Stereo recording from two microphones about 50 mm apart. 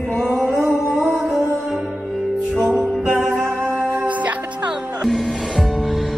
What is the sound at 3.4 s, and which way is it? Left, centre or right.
Music, centre.